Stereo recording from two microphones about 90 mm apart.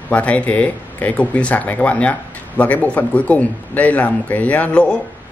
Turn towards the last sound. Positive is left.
turn(degrees=15)  # may be behind; listen again after turning